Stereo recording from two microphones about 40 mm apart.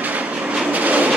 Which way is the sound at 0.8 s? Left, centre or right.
Right.